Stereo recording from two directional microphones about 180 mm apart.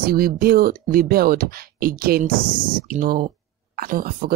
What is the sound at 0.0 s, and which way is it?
Speech, 55° right (ahead or behind).